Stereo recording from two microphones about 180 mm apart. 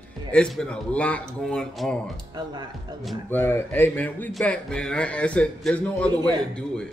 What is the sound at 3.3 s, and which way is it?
A man's voice, 10° left (ahead or behind).